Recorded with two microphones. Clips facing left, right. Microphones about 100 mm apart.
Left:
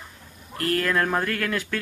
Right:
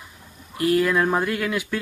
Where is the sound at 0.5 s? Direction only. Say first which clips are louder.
Right 4 dB; 10° right (ahead or behind).